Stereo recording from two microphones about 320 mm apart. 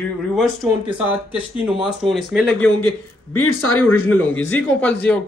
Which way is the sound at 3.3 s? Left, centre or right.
Left.